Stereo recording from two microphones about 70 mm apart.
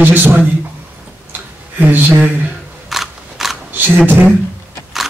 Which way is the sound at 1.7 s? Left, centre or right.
Right.